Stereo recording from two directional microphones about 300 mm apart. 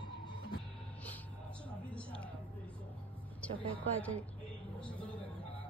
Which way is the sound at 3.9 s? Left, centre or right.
Centre.